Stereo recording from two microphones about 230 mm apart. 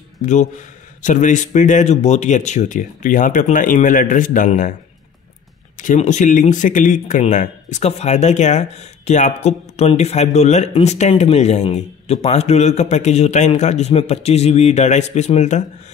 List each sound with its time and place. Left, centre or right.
0.2 s speech: left
5.8 s speech: left